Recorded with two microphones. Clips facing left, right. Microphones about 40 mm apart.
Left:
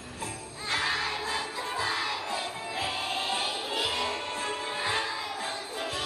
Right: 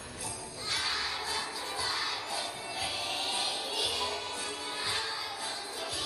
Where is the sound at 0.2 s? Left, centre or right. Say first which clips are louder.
Left 4 dB; left.